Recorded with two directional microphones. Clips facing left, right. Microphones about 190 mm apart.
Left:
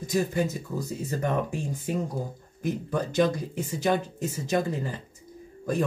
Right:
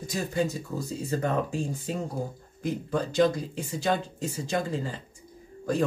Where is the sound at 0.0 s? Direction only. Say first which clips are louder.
Left 2 dB; 20° left (ahead or behind).